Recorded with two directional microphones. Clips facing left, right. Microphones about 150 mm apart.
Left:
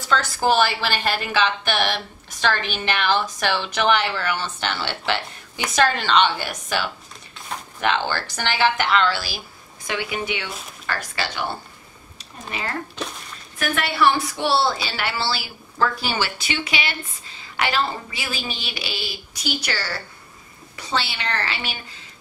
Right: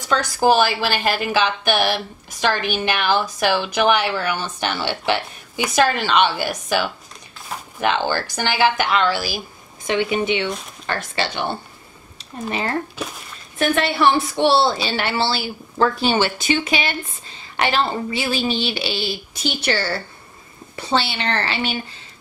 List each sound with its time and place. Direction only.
0.0 s a woman's voice: 15° right (ahead or behind)
13.0 s a woman's voice: 5° right (ahead or behind)
13.6 s a woman's voice: 25° right (ahead or behind)
16.3 s speech: 45° right (ahead or behind)
17.6 s a woman's voice: 25° right (ahead or behind)